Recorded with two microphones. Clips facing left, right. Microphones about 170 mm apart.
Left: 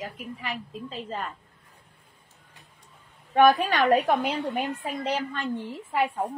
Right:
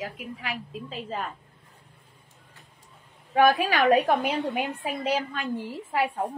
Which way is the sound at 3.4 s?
5° right (ahead or behind).